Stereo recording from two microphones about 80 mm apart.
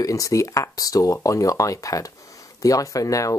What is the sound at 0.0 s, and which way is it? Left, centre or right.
Speech, left.